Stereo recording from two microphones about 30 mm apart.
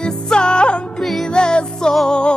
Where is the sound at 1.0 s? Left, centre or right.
Centre.